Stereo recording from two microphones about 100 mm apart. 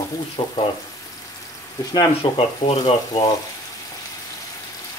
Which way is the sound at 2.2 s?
55° left (ahead or behind).